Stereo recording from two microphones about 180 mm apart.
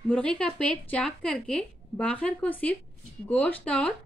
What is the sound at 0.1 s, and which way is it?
A woman's voice, 5° left (ahead or behind).